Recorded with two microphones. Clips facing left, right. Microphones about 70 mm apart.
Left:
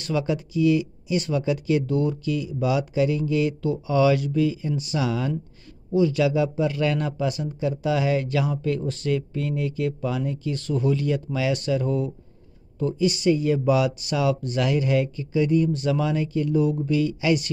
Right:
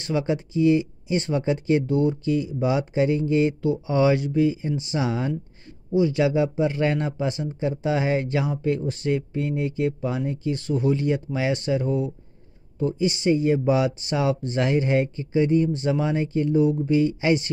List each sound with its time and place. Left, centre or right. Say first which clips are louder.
0.0 s speech: right 1 dB; right